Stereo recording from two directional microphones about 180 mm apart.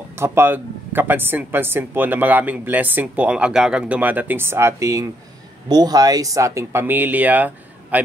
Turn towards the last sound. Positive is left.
turn(degrees=-10)  # may be behind; listen again after turning